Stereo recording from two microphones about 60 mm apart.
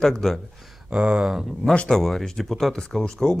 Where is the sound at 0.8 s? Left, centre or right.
Centre.